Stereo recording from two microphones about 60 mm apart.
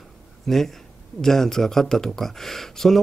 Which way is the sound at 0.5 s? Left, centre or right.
Centre.